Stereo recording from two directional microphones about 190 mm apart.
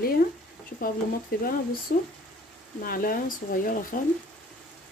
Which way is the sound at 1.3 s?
50° left (ahead or behind).